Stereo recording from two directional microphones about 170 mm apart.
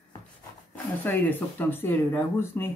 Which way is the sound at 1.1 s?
10° left (ahead or behind).